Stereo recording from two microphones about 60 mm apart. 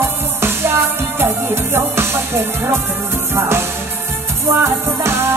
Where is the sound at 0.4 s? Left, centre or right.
Right.